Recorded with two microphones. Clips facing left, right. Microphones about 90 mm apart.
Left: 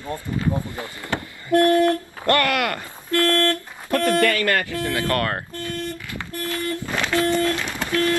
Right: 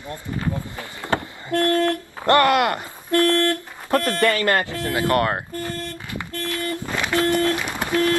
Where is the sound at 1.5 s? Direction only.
15° left (ahead or behind).